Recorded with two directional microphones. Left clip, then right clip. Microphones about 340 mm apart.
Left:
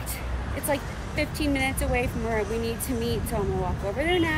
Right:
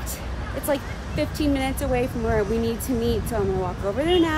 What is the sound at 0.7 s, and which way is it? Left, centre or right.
Speech, centre.